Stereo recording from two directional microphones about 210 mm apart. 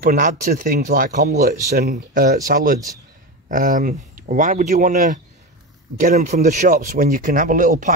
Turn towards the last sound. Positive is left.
turn(degrees=-40)  # may be behind; listen again after turning